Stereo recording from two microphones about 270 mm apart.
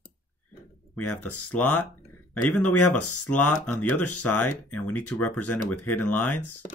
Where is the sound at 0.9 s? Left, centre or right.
Centre.